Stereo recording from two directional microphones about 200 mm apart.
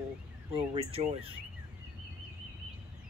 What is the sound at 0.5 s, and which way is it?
Speech, 25° right (ahead or behind).